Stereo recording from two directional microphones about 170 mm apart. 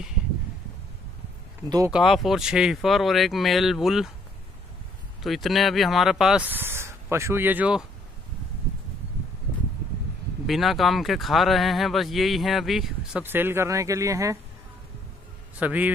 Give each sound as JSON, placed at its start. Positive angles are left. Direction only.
{"t": 1.9, "sound": "speech", "side_deg": 0}
{"t": 5.2, "sound": "speech", "side_deg": 0}
{"t": 10.4, "sound": "speech", "side_deg": 0}
{"t": 13.2, "sound": "speech", "side_deg": -10}
{"t": 15.6, "sound": "speech", "side_deg": -10}